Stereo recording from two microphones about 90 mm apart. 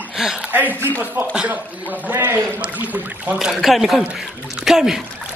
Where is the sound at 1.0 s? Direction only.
20° right (ahead or behind).